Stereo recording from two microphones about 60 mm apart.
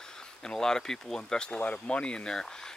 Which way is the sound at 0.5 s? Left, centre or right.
Centre.